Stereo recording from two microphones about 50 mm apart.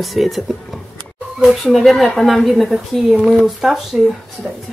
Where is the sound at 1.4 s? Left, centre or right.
Centre.